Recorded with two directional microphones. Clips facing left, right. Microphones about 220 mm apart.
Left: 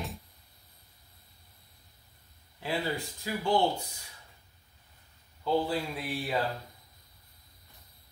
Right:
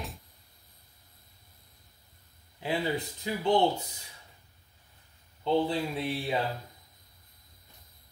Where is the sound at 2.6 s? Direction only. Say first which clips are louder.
Right 2 dB; 20° right (ahead or behind).